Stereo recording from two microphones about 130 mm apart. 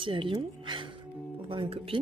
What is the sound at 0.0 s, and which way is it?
Speech, 40° right (ahead or behind).